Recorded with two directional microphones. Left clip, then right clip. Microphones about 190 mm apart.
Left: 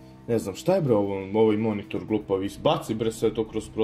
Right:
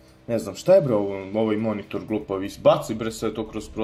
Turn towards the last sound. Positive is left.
turn(degrees=20)  # may be behind; listen again after turning